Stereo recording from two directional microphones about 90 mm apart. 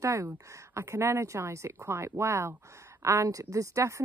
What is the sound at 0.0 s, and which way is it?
Speech, 35° right (ahead or behind).